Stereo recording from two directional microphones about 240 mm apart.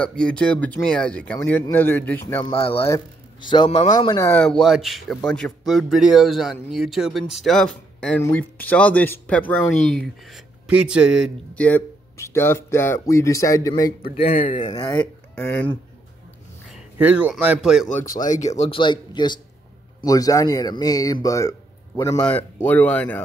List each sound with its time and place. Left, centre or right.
0.0 s speech: centre
2.5 s a man's voice: left
14.2 s speech: left
14.6 s speech: centre
15.3 s speech: centre
18.1 s speech: left
18.6 s a man's voice: left